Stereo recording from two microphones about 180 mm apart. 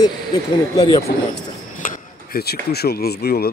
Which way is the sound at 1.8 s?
50° left (ahead or behind).